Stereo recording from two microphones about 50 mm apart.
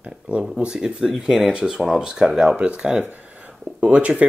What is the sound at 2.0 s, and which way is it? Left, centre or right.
Speech, centre.